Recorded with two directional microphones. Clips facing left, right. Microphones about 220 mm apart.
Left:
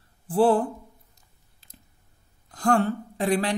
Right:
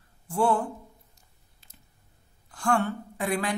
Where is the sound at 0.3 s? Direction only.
35° left (ahead or behind).